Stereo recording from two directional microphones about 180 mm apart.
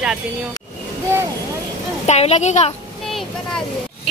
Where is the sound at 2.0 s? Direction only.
35° left (ahead or behind).